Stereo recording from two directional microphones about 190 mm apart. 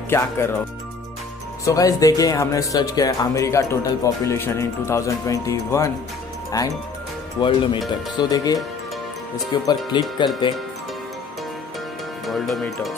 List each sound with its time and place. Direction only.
0.1 s speech: 15° left (ahead or behind)
1.6 s speech: 15° left (ahead or behind)
12.3 s speech: centre (ahead or behind)